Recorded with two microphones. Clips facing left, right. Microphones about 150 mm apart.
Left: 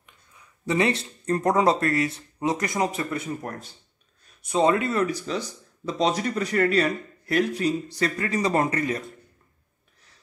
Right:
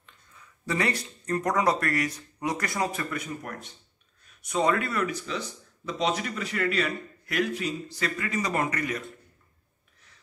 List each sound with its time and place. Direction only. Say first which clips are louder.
0.0 s speech: even; 20° left (ahead or behind)
5.0 s speech: left 4 dB; 35° left (ahead or behind)